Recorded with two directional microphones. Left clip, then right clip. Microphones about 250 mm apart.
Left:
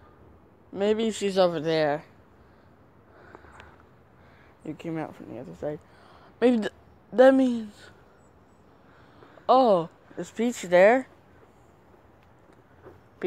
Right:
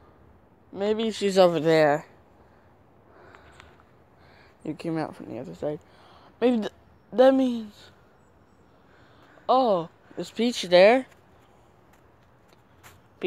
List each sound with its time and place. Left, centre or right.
0.7 s a man's voice: centre
1.2 s speech: right
4.6 s a man's voice: right; by 7.9 s centre
9.5 s speech: centre
10.1 s speech: centre